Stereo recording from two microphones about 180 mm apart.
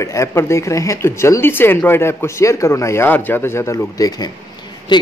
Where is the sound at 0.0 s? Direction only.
15° left (ahead or behind).